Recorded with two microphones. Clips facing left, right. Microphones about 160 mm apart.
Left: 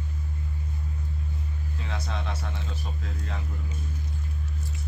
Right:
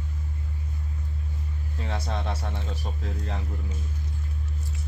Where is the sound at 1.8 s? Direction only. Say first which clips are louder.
Right 4 dB; 35° right (ahead or behind).